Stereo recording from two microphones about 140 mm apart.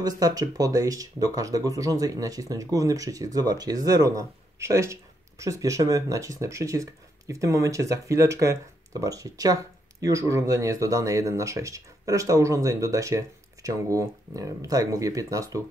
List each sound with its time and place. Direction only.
0.2 s speech: 25° right (ahead or behind)